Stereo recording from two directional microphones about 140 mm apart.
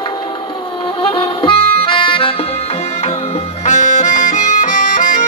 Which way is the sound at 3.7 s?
60° left (ahead or behind).